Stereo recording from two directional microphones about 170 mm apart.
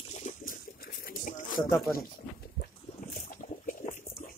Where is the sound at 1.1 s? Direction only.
50° left (ahead or behind).